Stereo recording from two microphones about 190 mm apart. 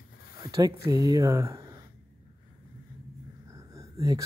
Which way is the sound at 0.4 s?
20° right (ahead or behind).